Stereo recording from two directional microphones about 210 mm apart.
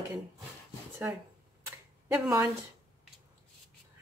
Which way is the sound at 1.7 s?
10° right (ahead or behind).